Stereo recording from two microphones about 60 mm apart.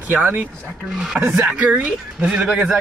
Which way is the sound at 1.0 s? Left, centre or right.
Centre.